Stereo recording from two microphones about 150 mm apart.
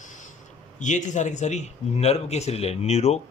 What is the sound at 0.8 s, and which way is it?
Speech, 55° left (ahead or behind).